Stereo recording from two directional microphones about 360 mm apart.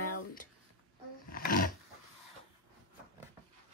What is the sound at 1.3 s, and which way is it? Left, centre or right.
Roaring cats, left.